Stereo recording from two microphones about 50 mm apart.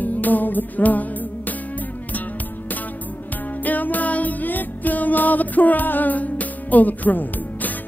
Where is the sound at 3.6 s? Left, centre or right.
Left.